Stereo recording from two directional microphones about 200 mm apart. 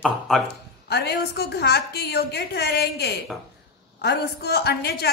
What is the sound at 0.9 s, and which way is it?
A woman's voice, 55° left (ahead or behind).